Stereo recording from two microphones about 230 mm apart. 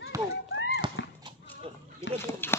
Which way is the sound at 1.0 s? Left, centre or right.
Left.